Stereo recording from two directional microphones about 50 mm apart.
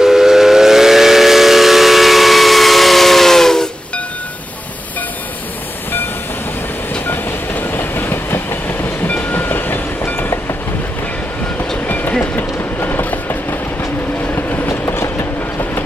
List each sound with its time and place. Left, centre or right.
0.0 s steam whistle: centre
7.1 s train: left
12.1 s train: left
12.8 s train: left
14.7 s train: left